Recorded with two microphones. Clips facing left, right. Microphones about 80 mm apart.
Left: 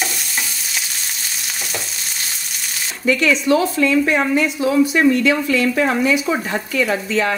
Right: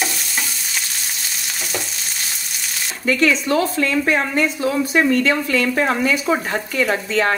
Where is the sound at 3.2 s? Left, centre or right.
Right.